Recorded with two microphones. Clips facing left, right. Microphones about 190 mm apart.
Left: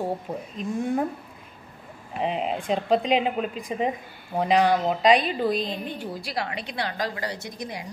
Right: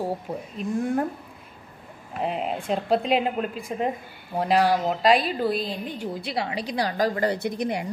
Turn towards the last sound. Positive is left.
turn(degrees=-60)  # may be behind; listen again after turning